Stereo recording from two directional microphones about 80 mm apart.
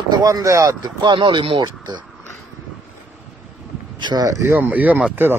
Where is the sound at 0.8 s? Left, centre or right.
Right.